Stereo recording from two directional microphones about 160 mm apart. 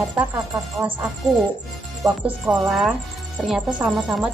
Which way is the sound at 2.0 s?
20° right (ahead or behind).